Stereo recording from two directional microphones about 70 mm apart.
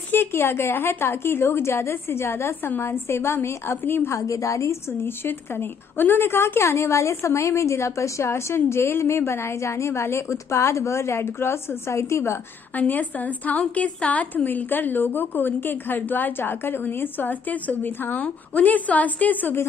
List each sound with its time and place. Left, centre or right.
0.1 s a woman's voice: left
4.1 s a woman's voice: left
12.7 s a woman's voice: left